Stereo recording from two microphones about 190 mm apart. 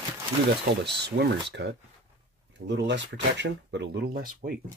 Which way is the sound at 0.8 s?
60° right (ahead or behind).